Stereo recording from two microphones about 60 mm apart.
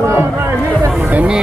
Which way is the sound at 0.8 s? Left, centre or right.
Right.